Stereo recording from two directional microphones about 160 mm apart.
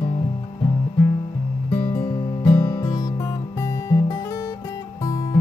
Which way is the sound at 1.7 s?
20° left (ahead or behind).